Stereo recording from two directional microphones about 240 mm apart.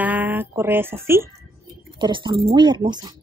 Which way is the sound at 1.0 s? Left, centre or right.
Centre.